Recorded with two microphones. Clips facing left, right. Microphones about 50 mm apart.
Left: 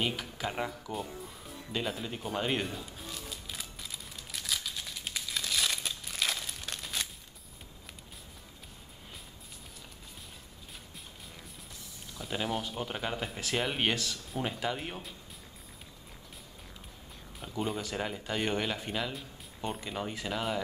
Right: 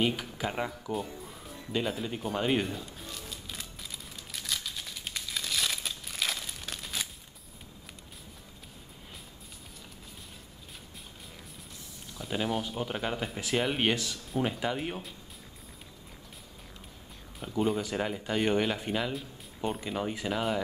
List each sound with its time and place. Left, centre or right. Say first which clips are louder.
0.0 s speech: right 4 dB; centre
4.3 s crumpling: even; centre
12.2 s speech: right 2 dB; centre
17.4 s speech: right 5 dB; centre